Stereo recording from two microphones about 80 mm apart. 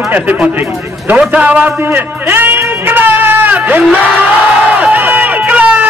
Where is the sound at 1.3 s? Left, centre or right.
Centre.